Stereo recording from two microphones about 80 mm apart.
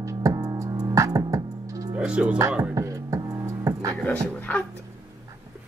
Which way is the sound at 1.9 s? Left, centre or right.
Centre.